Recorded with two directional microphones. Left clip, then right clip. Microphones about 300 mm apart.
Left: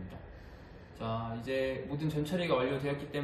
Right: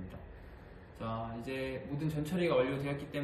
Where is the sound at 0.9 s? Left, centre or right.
Centre.